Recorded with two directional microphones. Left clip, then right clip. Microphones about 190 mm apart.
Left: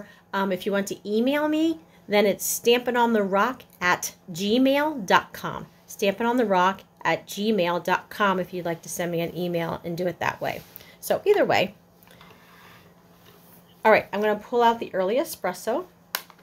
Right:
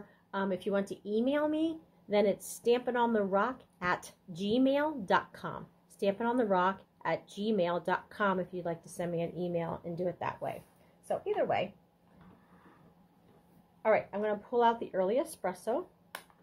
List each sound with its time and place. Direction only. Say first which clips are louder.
0.3 s speech: left 8 dB; 10° left (ahead or behind)
11.1 s speech: left 11 dB; 45° left (ahead or behind)
14.1 s speech: left 9 dB; 15° left (ahead or behind)
14.4 s speech: left 5 dB; centre (ahead or behind)